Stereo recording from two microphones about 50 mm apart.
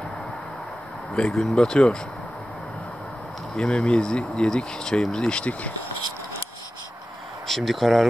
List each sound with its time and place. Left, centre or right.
1.1 s speech: centre
3.7 s speech: centre
7.4 s speech: centre